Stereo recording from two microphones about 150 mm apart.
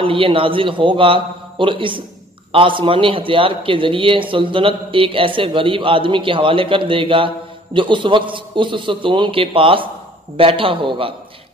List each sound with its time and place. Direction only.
0.0 s a man's voice: 35° right (ahead or behind)